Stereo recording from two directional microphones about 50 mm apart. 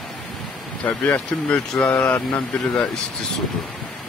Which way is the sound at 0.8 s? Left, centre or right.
Left.